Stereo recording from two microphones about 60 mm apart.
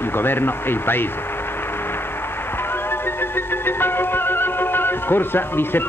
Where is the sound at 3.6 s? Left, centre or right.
Left.